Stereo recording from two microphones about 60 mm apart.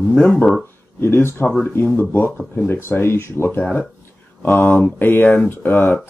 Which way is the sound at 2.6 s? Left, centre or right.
Left.